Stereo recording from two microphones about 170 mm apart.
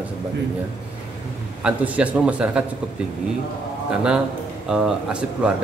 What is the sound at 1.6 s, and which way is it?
A man's voice, 5° right (ahead or behind).